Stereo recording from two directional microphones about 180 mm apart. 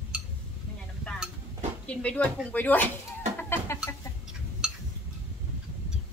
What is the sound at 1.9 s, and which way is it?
Speech, 5° left (ahead or behind).